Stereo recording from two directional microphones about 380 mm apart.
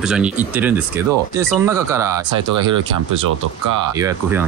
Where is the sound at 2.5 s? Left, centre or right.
Right.